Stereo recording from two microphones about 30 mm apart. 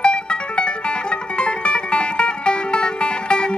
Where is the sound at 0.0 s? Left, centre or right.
Left.